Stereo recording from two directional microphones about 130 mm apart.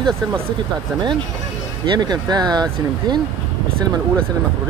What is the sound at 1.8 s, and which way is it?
Speech, 35° right (ahead or behind).